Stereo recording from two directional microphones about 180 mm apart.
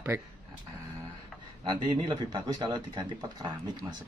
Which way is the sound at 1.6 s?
25° right (ahead or behind).